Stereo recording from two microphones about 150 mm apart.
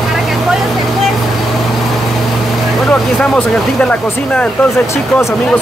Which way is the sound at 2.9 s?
5° left (ahead or behind).